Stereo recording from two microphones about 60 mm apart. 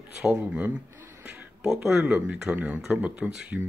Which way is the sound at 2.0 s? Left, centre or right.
Right.